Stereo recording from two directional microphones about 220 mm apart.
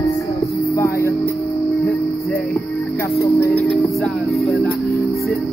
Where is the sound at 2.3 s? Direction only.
15° left (ahead or behind).